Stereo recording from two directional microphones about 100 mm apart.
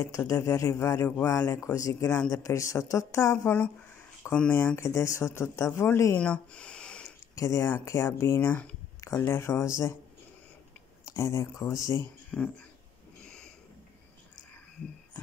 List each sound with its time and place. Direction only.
0.0 s a man's voice: 30° left (ahead or behind)
3.4 s speech: 15° left (ahead or behind)
4.6 s speech: 25° left (ahead or behind)
6.1 s speech: 10° left (ahead or behind)
7.3 s speech: 30° left (ahead or behind)
11.1 s a man's voice: 30° left (ahead or behind)
12.3 s speech: 10° left (ahead or behind)